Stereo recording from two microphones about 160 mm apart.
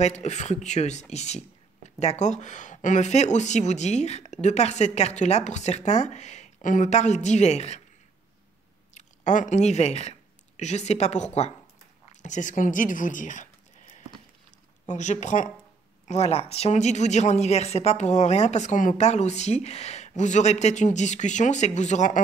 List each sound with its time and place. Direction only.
0.0 s speech: 45° left (ahead or behind)
8.9 s speech: 50° left (ahead or behind)